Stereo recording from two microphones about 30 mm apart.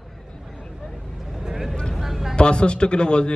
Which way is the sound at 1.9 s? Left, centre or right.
Centre.